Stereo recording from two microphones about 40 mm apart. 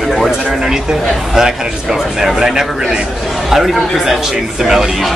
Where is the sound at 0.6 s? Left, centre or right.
Centre.